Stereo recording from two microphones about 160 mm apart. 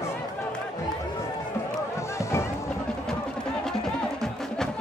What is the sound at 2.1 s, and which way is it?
Music, 15° left (ahead or behind).